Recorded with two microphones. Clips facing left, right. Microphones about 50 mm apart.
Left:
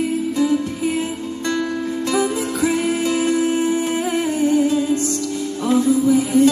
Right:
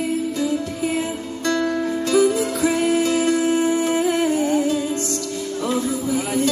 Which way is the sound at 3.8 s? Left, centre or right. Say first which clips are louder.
Right 1 dB; left.